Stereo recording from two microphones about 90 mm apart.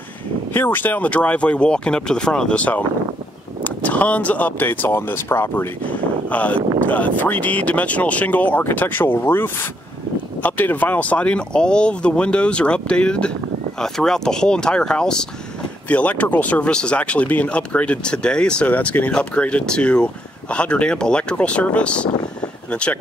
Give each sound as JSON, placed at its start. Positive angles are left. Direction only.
{"t": 0.5, "sound": "speech", "side_deg": 25}